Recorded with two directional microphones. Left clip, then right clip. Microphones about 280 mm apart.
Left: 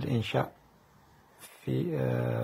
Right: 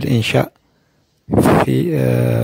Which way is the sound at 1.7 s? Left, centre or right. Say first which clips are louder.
Right 14 dB; right.